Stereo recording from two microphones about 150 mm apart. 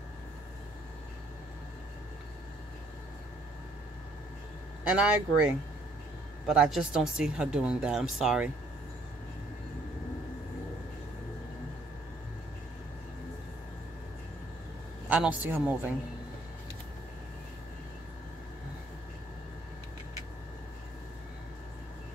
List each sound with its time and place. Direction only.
4.8 s speech: 10° right (ahead or behind)
15.0 s speech: 10° right (ahead or behind)